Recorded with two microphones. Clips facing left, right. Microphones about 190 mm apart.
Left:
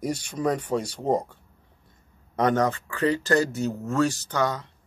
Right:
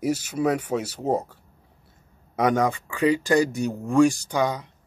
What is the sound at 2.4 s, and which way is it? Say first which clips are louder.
Speech: right 1 dB; 10° right (ahead or behind).